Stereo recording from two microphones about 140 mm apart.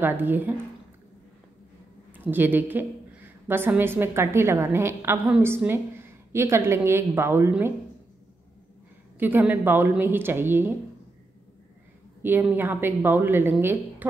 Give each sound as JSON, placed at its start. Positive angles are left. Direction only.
{"t": 0.0, "sound": "a woman's voice", "side_deg": -15}
{"t": 2.1, "sound": "a woman's voice", "side_deg": -15}
{"t": 9.2, "sound": "a woman's voice", "side_deg": -15}
{"t": 12.2, "sound": "a woman's voice", "side_deg": -15}